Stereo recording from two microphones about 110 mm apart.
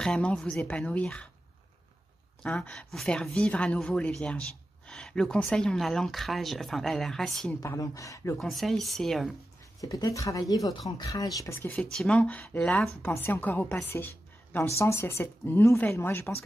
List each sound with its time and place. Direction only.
0.0 s a woman's voice: 10° left (ahead or behind)
2.4 s a woman's voice: 10° left (ahead or behind)
7.6 s speech: 30° left (ahead or behind)
8.4 s speech: centre (ahead or behind)
9.8 s speech: 35° left (ahead or behind)
11.7 s a woman's voice: 10° left (ahead or behind)